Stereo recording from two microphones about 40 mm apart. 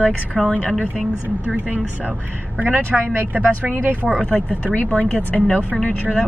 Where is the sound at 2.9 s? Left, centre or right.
Right.